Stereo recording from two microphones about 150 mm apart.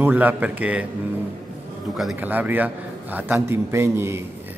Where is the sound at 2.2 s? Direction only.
10° right (ahead or behind).